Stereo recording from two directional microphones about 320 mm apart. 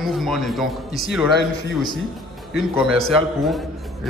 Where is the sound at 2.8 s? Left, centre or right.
Centre.